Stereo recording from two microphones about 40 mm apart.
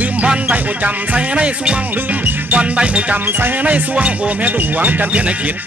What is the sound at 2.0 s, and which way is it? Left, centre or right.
Music, right.